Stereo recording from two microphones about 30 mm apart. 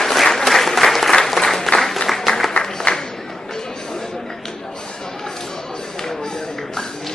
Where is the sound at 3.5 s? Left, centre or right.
Centre.